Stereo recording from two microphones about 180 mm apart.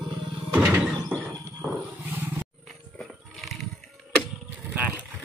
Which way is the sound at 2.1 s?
10° right (ahead or behind).